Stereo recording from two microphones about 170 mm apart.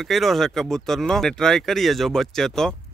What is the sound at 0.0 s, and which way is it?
Speech, centre (ahead or behind).